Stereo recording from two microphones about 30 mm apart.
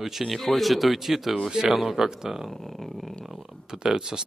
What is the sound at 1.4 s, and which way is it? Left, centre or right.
Speech, right.